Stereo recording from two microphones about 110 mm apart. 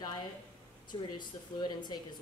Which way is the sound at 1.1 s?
45° left (ahead or behind).